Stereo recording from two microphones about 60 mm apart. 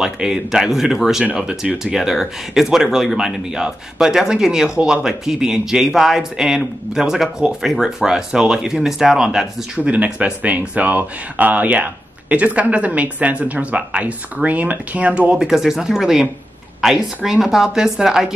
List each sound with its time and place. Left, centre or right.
0.0 s speech: centre
9.8 s speech: right
15.3 s speech: centre